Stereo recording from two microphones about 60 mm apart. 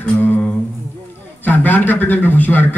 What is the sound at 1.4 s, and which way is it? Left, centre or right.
A man's voice, left.